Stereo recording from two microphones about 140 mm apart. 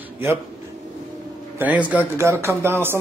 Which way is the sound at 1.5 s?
10° right (ahead or behind).